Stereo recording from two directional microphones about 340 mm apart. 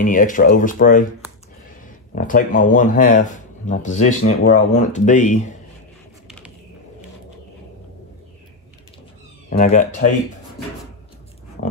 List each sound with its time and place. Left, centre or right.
0.0 s speech: left
6.2 s a sound: centre
9.5 s speech: left